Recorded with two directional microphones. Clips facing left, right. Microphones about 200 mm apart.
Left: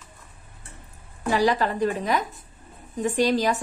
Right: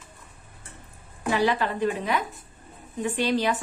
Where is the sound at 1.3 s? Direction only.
40° left (ahead or behind).